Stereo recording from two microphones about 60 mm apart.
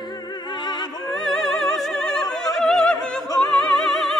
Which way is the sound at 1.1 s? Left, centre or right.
Centre.